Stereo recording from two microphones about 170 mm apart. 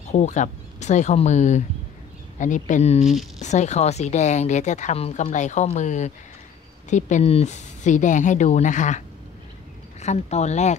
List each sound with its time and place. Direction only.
0.1 s speech: 45° left (ahead or behind)
10.0 s speech: 40° left (ahead or behind)